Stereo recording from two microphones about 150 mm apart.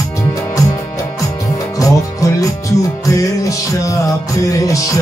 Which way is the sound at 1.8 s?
20° left (ahead or behind).